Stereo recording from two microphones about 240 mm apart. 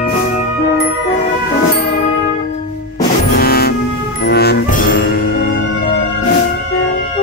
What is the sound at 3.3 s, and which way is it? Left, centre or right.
Music, left.